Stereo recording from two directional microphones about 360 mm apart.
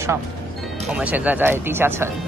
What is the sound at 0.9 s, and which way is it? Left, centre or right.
Speech, centre.